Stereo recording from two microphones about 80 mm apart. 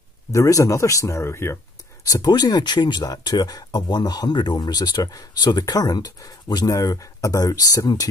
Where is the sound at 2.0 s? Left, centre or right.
Left.